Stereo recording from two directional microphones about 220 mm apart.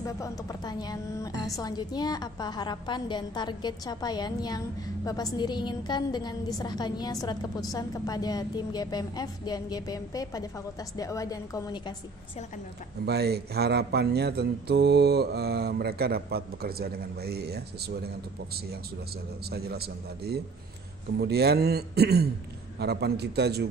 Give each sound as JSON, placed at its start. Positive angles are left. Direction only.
{"t": 0.0, "sound": "a woman's voice", "side_deg": 15}
{"t": 13.0, "sound": "speech", "side_deg": -45}
{"t": 19.5, "sound": "speech", "side_deg": -45}